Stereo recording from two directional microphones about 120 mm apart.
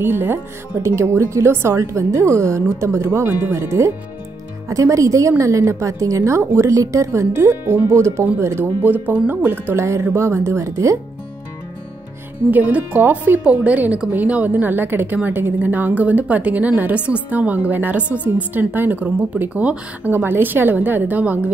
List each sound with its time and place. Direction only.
0.0 s speech: 20° right (ahead or behind)
12.4 s speech: 15° right (ahead or behind)